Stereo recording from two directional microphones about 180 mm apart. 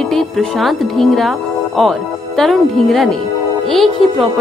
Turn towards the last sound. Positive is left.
turn(degrees=0)  # may be behind; listen again after turning